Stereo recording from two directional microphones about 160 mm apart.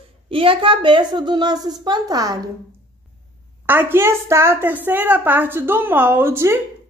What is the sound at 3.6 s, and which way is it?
A woman's voice, 15° right (ahead or behind).